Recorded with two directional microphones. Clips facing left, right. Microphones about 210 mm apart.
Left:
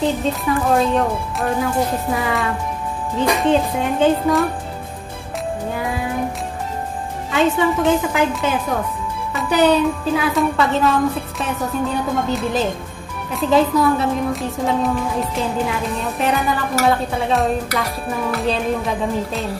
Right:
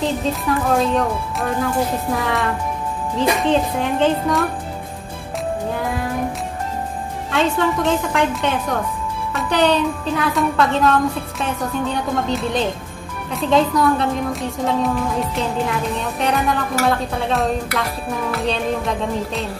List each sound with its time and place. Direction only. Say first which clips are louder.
0.0 s music: left 1 dB; centre (ahead or behind)
5.8 s music: even; centre (ahead or behind)
7.2 s music: left 2 dB; centre (ahead or behind)